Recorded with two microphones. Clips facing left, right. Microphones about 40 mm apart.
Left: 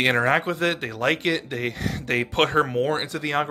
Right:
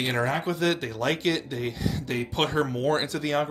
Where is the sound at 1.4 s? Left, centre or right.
Left.